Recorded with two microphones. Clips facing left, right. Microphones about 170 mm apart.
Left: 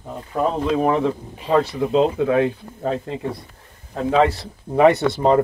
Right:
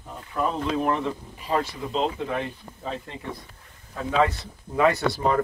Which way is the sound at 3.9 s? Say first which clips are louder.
Left 6 dB; 35° left (ahead or behind).